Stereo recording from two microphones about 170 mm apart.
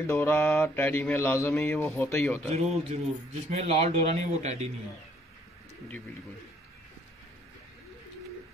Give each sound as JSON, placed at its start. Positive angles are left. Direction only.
{"t": 0.0, "sound": "mantra", "side_deg": 15}
{"t": 2.5, "sound": "a man's voice", "side_deg": -40}